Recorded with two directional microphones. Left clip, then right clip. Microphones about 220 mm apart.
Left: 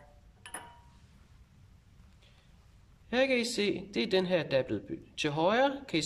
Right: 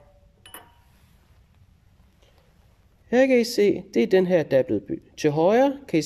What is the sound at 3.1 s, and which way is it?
Speech, 25° right (ahead or behind).